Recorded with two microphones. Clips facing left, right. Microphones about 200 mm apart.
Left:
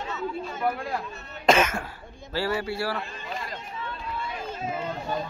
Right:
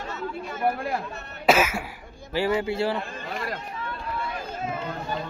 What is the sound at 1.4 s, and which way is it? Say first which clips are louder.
Cough: even; 5° right (ahead or behind).